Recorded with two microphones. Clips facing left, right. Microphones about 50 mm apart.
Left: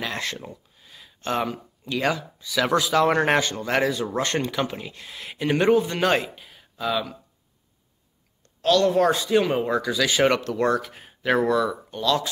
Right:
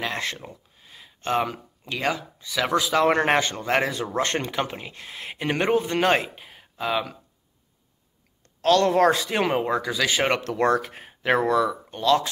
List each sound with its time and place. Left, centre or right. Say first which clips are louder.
0.0 s speech: right 1 dB; right
0.5 s a sound: left 2 dB; right
2.5 s speech: left 2 dB; centre
2.9 s speech: right 1 dB; right
8.5 s speech: right 1 dB; right
9.6 s speech: left 1 dB; right
10.5 s speech: right 1 dB; right